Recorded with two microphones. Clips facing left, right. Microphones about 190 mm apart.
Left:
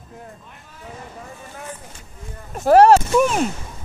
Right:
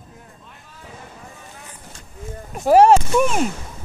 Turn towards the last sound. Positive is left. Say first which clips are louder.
# left 1 dB
turn(degrees=0)  # may be behind; listen again after turning